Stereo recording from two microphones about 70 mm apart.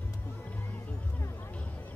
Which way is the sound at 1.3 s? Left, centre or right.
Left.